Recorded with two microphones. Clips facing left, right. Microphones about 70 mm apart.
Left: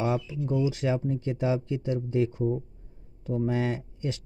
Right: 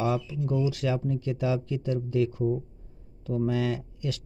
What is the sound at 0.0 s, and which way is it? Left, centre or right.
Speech, left.